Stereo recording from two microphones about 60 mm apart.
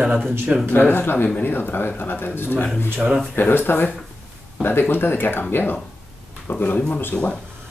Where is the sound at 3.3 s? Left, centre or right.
Left.